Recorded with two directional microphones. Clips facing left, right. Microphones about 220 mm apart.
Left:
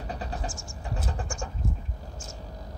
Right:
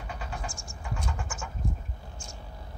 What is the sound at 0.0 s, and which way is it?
Vehicle, 35° left (ahead or behind).